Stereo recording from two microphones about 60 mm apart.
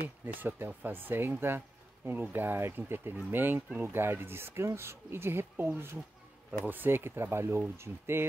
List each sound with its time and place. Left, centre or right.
0.2 s speech: right